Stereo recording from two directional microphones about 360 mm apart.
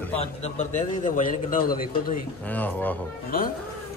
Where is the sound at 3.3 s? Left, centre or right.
Left.